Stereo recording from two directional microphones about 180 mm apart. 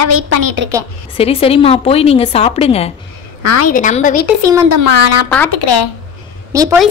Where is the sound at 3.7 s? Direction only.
45° left (ahead or behind).